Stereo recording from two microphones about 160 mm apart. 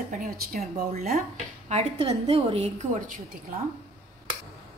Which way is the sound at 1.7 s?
40° right (ahead or behind).